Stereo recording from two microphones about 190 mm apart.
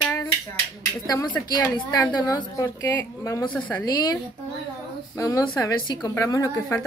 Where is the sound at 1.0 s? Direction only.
20° left (ahead or behind).